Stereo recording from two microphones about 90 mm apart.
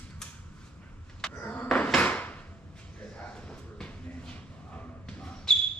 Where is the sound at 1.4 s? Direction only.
20° left (ahead or behind).